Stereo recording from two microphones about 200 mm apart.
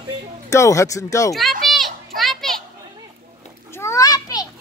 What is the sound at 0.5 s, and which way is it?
Speech, 15° left (ahead or behind).